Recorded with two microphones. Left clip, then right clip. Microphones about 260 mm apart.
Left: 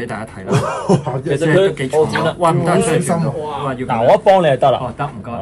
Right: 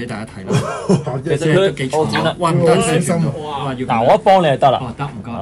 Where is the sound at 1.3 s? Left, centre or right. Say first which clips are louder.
Left 1 dB; centre.